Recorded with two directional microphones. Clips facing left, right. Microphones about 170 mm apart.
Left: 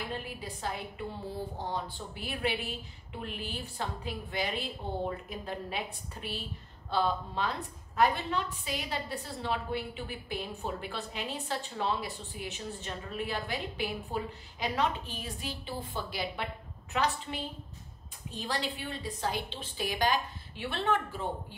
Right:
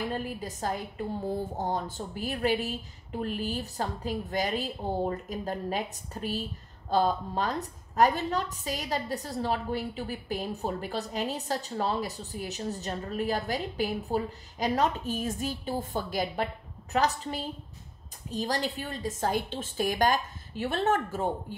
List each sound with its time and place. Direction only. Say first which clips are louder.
0.0 s a woman's voice: right 6 dB; 45° right (ahead or behind)